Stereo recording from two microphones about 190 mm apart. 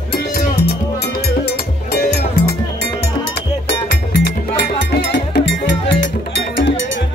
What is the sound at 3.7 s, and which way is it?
Music, 65° left (ahead or behind).